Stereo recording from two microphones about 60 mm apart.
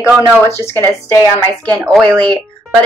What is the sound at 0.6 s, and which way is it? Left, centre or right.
Speech, left.